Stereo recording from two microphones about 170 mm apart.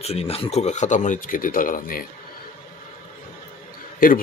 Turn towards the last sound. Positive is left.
turn(degrees=55)  # may be behind; listen again after turning